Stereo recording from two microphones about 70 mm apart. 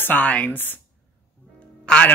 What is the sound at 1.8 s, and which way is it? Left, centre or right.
Speech, centre.